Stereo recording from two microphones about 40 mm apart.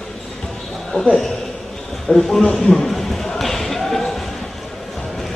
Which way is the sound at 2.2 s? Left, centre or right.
Centre.